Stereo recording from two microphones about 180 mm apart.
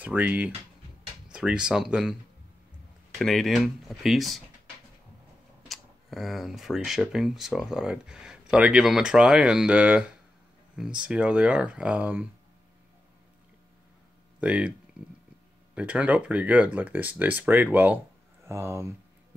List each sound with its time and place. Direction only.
0.0 s speech: 10° right (ahead or behind)
3.2 s speech: centre (ahead or behind)
5.7 s speech: centre (ahead or behind)
14.4 s speech: 5° right (ahead or behind)
15.7 s speech: 5° right (ahead or behind)